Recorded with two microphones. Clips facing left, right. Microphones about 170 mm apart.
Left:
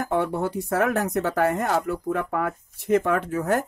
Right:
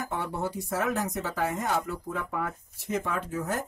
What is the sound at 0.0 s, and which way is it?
Speech, 60° left (ahead or behind).